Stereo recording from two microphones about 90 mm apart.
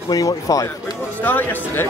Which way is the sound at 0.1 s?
40° left (ahead or behind).